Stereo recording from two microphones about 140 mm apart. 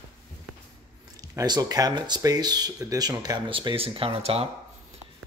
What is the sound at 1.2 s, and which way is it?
Speech, 30° right (ahead or behind).